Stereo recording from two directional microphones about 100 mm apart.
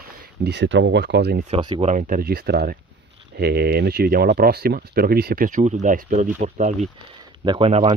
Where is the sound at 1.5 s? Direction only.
90° right.